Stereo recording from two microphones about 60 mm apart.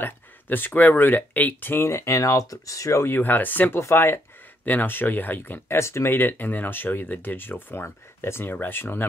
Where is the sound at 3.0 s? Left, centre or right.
Left.